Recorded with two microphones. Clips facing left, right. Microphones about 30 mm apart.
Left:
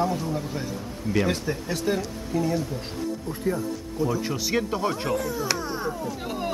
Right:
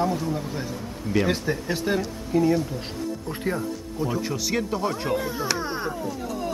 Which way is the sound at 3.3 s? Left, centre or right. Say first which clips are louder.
Even; right.